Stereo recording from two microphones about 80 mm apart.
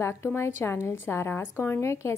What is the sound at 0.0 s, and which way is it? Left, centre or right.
A woman's voice, left.